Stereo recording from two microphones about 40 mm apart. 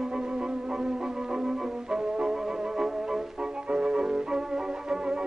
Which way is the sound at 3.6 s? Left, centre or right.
Right.